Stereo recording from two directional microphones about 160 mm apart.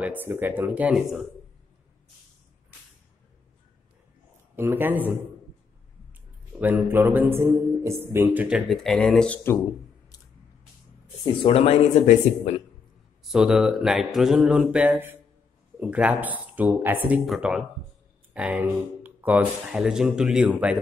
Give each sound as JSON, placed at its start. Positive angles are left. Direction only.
{"t": 0.0, "sound": "a man's voice", "side_deg": -10}
{"t": 4.6, "sound": "a man's voice", "side_deg": -15}
{"t": 6.6, "sound": "a man's voice", "side_deg": -10}
{"t": 11.4, "sound": "speech", "side_deg": 40}
{"t": 13.3, "sound": "mantra", "side_deg": -5}
{"t": 15.8, "sound": "a man's voice", "side_deg": -10}
{"t": 17.3, "sound": "mantra", "side_deg": -5}
{"t": 18.3, "sound": "a man's voice", "side_deg": -10}